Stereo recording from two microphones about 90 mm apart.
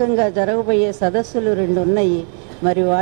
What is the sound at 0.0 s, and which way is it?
A woman's voice, 15° right (ahead or behind).